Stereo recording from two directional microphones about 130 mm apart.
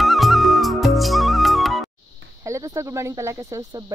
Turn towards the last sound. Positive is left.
turn(degrees=-20)  # may be behind; listen again after turning